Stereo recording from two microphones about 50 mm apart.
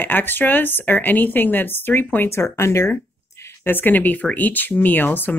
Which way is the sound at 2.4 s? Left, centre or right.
Left.